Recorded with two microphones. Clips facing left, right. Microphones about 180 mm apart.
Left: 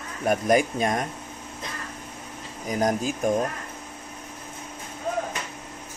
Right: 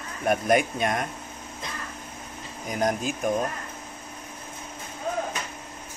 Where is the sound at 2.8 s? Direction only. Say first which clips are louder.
Left 1 dB; 35° left (ahead or behind).